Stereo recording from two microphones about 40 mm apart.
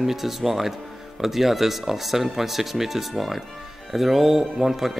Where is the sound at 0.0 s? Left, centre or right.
Centre.